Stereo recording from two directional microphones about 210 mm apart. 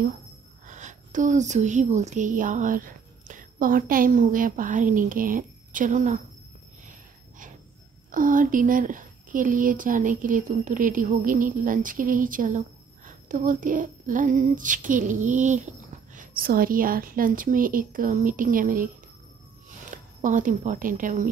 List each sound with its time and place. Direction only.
0.7 s speech: 35° right (ahead or behind)
6.9 s a sound: 40° right (ahead or behind)
8.1 s speech: 40° right (ahead or behind)
19.9 s speech: 35° right (ahead or behind)